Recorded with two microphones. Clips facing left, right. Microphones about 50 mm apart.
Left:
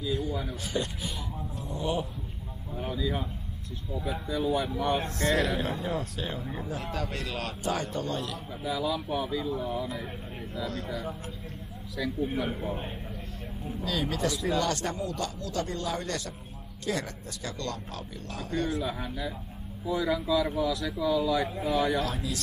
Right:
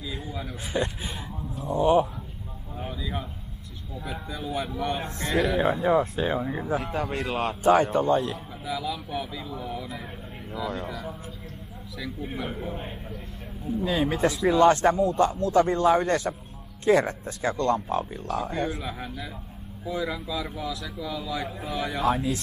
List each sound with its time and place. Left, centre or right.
0.1 s speech: right
2.8 s a sound: centre
4.5 s speech: centre
5.3 s speech: right
8.7 s speech: centre
12.4 s speech: centre
13.8 s speech: right
18.8 s speech: centre
21.9 s speech: right